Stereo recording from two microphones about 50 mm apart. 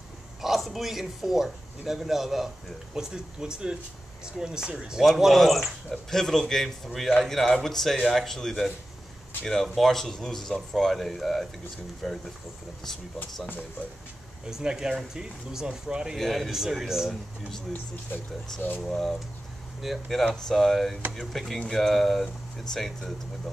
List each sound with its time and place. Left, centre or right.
0.4 s speech: centre
5.0 s speech: centre
14.5 s speech: centre
16.2 s speech: centre
18.9 s speech: centre
19.8 s speech: centre
20.2 s speech: centre